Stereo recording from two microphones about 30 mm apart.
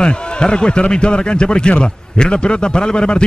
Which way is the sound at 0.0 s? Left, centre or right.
Left.